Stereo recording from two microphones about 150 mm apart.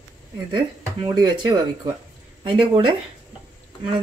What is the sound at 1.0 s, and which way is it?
Speech, 30° right (ahead or behind).